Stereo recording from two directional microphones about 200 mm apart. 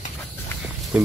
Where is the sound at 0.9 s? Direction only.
5° right (ahead or behind).